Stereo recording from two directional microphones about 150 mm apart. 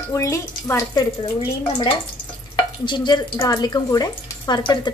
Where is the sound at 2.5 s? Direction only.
30° left (ahead or behind).